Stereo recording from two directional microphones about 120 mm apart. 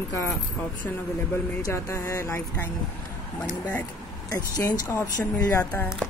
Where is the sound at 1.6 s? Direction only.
25° left (ahead or behind).